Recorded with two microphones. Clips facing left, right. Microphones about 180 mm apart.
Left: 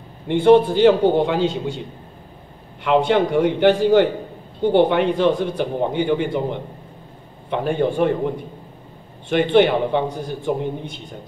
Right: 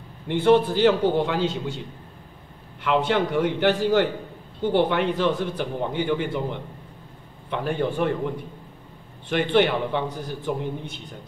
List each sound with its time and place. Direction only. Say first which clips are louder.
0.3 s a man's voice: left 5 dB; 25° left (ahead or behind)
2.8 s a man's voice: left 5 dB; 20° left (ahead or behind)